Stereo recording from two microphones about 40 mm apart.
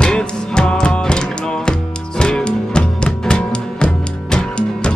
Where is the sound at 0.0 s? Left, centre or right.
Left.